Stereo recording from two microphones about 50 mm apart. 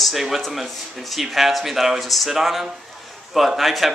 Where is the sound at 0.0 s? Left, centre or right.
Centre.